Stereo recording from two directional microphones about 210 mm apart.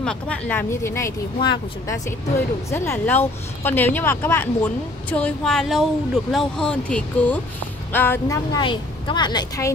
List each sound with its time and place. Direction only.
0.0 s speech: 5° left (ahead or behind)